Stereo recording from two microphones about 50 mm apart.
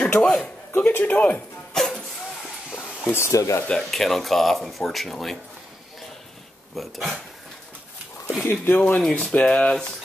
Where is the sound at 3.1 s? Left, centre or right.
Left.